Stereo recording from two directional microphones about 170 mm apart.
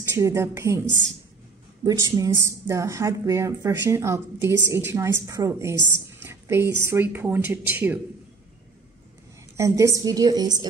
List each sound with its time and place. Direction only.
0.1 s a woman's voice: 15° right (ahead or behind)
2.1 s a woman's voice: 15° right (ahead or behind)
6.2 s a sound: 15° right (ahead or behind)
6.8 s a woman's voice: 15° right (ahead or behind)
9.6 s a woman's voice: 20° right (ahead or behind)